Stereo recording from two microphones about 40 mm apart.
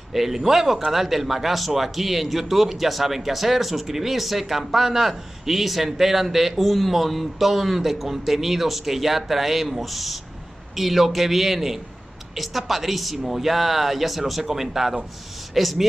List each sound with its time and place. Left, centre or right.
0.1 s a man's voice: centre